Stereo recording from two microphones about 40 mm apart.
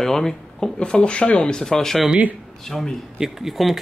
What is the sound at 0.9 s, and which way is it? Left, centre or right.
Speech, left.